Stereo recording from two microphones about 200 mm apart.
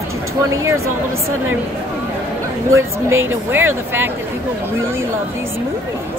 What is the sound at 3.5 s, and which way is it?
Speech, 10° right (ahead or behind).